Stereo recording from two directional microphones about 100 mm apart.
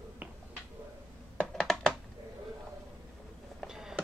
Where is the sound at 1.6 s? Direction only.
5° left (ahead or behind).